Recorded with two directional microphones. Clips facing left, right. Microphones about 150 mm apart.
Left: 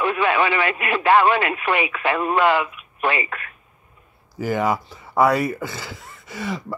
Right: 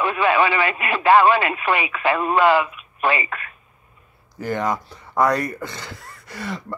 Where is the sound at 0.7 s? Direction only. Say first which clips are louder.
Right 2 dB; 30° right (ahead or behind).